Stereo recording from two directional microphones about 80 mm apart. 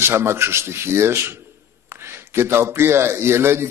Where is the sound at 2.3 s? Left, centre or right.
Right.